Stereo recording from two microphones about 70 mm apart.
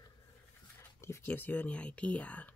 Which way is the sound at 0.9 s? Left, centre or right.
Left.